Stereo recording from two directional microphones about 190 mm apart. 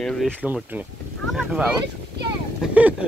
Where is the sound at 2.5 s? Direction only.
10° right (ahead or behind).